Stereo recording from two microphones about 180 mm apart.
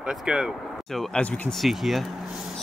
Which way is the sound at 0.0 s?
5° right (ahead or behind).